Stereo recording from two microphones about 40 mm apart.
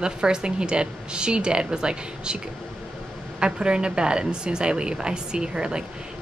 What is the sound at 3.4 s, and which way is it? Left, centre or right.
Speech, right.